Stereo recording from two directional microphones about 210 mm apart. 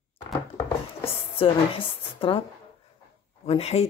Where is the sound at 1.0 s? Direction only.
25° left (ahead or behind).